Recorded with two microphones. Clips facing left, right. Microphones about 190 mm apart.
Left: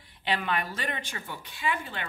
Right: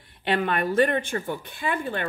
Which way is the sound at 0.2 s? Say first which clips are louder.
Right 6 dB; 55° right (ahead or behind).